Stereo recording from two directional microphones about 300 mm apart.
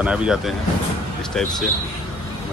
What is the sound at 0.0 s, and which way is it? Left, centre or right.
Speech, centre.